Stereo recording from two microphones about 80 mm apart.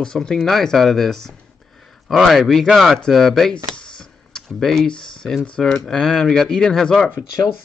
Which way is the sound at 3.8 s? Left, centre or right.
Centre.